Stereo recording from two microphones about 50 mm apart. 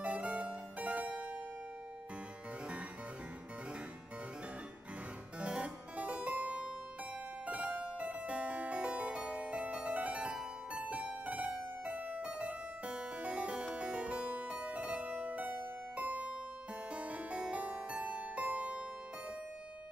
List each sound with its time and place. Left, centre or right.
0.0 s harpsichord: right
5.4 s music: right
8.0 s harpsichord: right
10.7 s music: right